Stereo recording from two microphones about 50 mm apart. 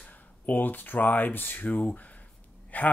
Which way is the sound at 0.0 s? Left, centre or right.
Left.